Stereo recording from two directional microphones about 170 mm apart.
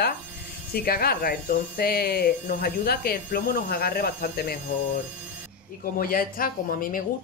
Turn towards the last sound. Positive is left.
turn(degrees=55)  # may be behind; listen again after turning